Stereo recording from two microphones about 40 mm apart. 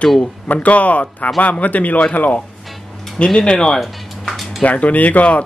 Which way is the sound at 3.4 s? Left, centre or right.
Centre.